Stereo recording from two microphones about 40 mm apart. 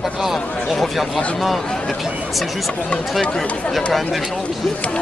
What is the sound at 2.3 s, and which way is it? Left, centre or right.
Speech, centre.